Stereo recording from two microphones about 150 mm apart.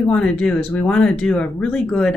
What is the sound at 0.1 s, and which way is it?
Speech, 5° left (ahead or behind).